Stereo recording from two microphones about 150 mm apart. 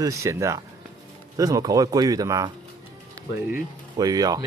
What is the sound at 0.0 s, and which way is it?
A man's voice, 20° right (ahead or behind).